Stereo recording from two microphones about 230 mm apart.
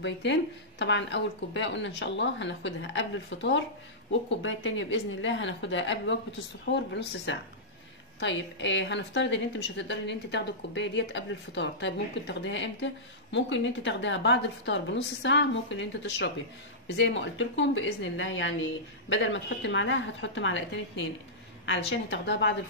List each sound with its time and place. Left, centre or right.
0.0 s a woman's voice: left